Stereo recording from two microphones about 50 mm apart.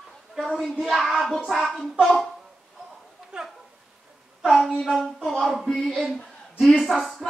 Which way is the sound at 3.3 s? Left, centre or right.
Centre.